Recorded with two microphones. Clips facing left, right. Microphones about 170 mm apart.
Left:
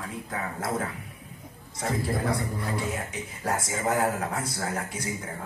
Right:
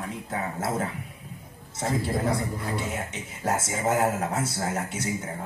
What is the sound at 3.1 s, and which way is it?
Speech, 25° right (ahead or behind).